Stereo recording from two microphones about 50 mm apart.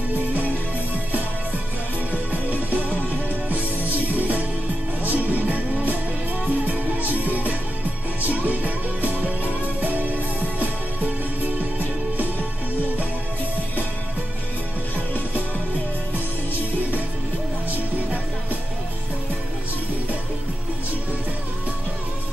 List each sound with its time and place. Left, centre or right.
2.5 s music: right